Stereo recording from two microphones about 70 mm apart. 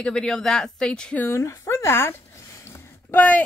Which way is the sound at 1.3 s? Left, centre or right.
Left.